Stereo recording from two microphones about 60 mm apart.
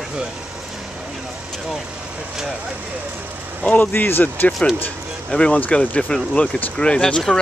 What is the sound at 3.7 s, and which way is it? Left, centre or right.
Speech, left.